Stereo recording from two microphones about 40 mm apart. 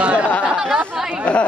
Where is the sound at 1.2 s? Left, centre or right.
Left.